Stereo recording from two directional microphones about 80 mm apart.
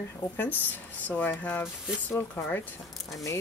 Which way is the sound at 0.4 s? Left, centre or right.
Left.